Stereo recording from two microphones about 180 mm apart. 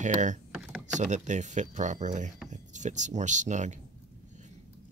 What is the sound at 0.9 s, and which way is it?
Speech, 40° right (ahead or behind).